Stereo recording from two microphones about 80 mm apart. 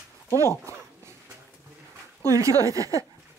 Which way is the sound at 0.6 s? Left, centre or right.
Right.